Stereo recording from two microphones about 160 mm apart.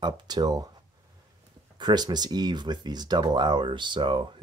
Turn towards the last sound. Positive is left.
turn(degrees=-30)  # may be behind; listen again after turning